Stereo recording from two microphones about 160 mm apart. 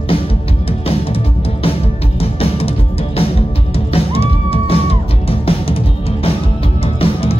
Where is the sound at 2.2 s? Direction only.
40° left (ahead or behind).